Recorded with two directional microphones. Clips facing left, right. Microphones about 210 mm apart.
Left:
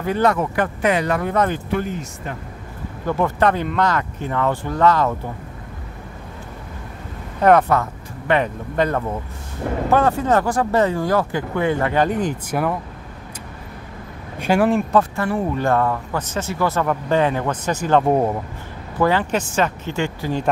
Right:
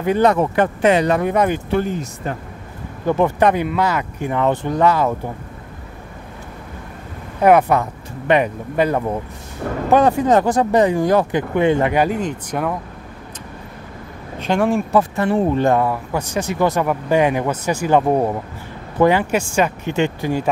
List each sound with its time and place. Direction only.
0.0 s speech: 20° right (ahead or behind)
1.7 s speech: 35° right (ahead or behind)
3.1 s speech: 15° right (ahead or behind)
7.4 s speech: 15° right (ahead or behind)
12.1 s speech: 5° left (ahead or behind)
14.4 s speech: 5° left (ahead or behind)
15.0 s speech: 20° right (ahead or behind)